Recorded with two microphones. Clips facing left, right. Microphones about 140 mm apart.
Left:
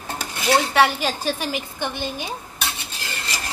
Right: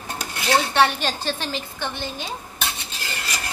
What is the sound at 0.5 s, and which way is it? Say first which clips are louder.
Speech: left 1 dB; 5° left (ahead or behind).